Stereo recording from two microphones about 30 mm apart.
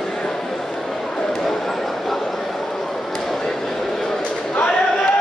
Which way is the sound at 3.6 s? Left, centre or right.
Centre.